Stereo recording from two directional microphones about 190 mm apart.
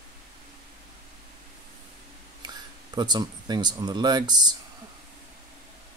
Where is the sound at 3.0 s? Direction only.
25° right (ahead or behind).